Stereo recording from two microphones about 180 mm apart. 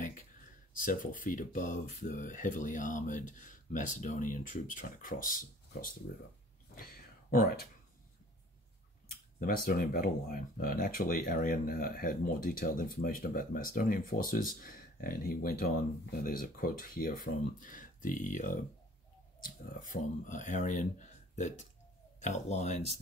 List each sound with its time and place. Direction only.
0.8 s speech: 50° left (ahead or behind)
6.7 s a sound: 55° left (ahead or behind)
9.4 s speech: 55° left (ahead or behind)
19.6 s speech: 50° left (ahead or behind)